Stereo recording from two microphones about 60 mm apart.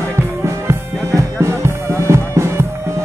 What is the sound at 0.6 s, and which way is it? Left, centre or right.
Music, right.